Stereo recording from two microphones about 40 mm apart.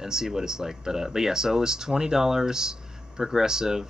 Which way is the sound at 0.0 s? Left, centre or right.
Centre.